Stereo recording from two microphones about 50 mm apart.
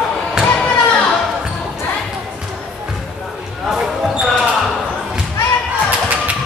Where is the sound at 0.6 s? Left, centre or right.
Centre.